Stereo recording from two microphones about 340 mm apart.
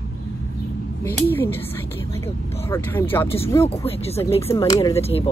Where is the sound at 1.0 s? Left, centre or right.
Centre.